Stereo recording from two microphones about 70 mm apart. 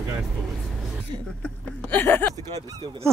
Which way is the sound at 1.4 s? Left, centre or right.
Left.